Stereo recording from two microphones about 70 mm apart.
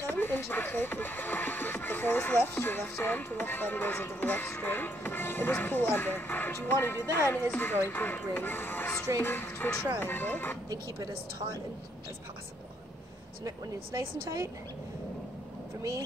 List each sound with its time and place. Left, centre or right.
0.0 s speech: left
9.2 s music: left
9.9 s speech: left
13.9 s speech: right